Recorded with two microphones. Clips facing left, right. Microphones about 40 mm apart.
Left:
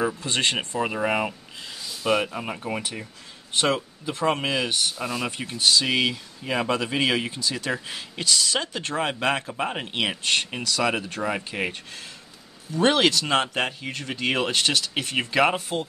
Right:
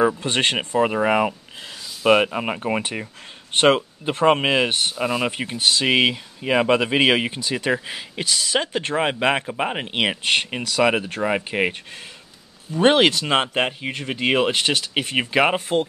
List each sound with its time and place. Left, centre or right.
0.0 s speech: right
0.7 s speech: right
2.0 s speech: right
3.5 s speech: right
4.9 s speech: right
5.3 s speech: right